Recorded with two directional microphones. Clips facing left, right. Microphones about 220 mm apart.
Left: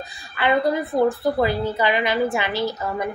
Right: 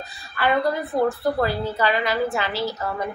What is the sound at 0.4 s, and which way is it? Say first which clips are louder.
A woman's voice: left 2 dB; 15° left (ahead or behind).